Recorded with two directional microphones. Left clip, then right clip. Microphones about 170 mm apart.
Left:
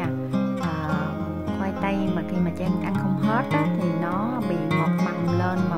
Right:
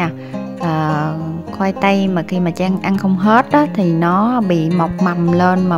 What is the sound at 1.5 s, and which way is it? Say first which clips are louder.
Speech: right 13 dB; 45° right (ahead or behind).